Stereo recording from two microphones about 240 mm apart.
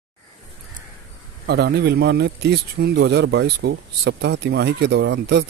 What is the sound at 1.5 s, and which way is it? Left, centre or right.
Speech, right.